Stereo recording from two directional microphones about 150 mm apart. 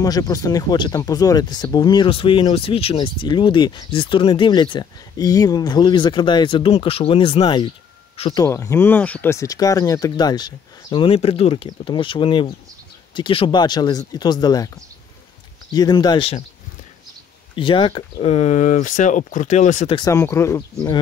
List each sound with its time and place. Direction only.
0.0 s speech: 25° left (ahead or behind)
8.5 s speech: 15° left (ahead or behind)
15.7 s speech: 25° left (ahead or behind)
17.6 s speech: 35° left (ahead or behind); by 20.0 s 50° left (ahead or behind)
20.0 s speech: 20° left (ahead or behind)